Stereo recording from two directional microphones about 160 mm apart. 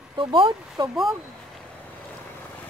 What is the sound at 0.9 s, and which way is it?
Speech, centre (ahead or behind).